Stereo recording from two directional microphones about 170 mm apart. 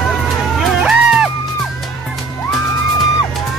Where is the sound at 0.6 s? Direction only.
5° right (ahead or behind).